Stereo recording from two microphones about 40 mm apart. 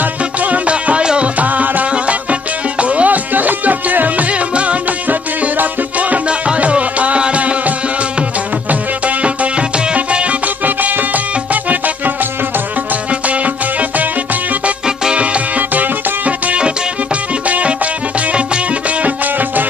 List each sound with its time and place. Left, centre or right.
0.4 s music: right
1.4 s music: right
4.3 s music: right
6.2 s music: right
9.0 s music: right
10.6 s music: right
15.1 s music: right